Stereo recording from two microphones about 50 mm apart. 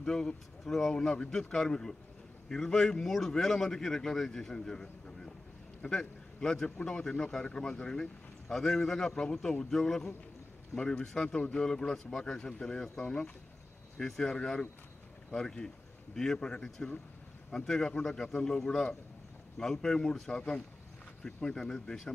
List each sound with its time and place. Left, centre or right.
0.0 s a man's voice: centre
1.1 s a man's voice: left